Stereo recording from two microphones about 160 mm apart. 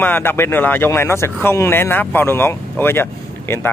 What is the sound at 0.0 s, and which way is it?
Speech, 15° left (ahead or behind).